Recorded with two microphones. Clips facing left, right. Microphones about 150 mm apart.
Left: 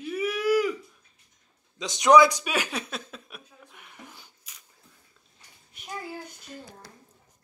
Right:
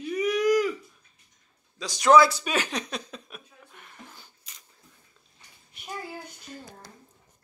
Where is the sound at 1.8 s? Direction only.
20° left (ahead or behind).